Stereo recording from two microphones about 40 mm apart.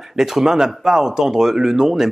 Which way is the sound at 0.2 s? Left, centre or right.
Centre.